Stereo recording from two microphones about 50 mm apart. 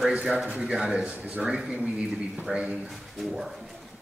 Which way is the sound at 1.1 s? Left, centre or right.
Right.